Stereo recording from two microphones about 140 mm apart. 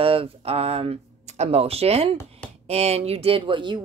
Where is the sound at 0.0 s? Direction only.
40° right (ahead or behind).